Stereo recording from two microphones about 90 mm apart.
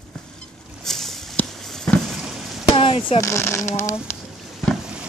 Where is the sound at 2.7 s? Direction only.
85° left.